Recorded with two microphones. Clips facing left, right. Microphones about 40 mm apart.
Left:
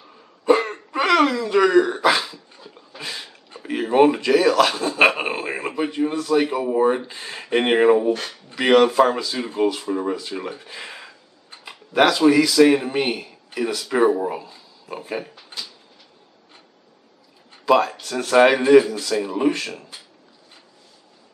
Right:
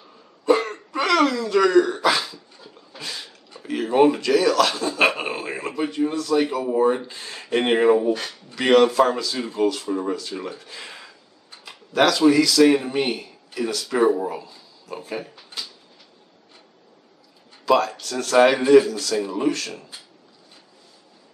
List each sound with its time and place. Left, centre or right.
0.5 s hiccup: centre
3.0 s a sound: centre
3.5 s speech: left
17.6 s speech: centre